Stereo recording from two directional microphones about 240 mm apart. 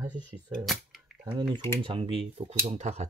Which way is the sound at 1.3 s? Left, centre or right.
Centre.